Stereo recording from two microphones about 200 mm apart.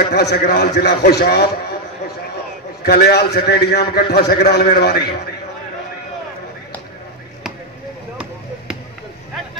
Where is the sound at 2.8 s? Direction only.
55° left (ahead or behind).